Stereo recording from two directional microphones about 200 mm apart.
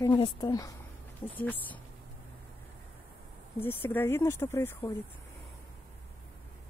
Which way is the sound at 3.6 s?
10° left (ahead or behind).